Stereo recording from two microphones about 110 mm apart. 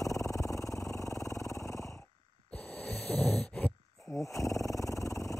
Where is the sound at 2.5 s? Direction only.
15° left (ahead or behind).